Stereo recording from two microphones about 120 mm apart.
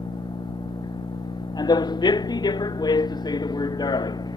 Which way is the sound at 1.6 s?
35° left (ahead or behind).